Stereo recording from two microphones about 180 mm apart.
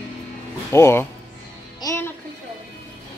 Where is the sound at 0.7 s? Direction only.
15° left (ahead or behind).